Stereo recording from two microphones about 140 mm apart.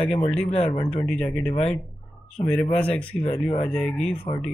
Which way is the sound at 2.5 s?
40° left (ahead or behind).